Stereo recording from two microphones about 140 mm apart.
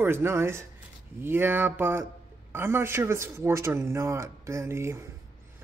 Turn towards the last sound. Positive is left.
turn(degrees=-20)  # may be behind; listen again after turning